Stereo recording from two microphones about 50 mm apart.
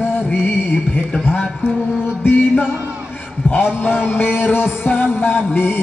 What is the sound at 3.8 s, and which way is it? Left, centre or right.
Music, left.